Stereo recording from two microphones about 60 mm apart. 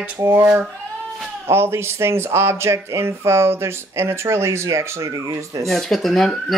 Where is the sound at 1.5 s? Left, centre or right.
Right.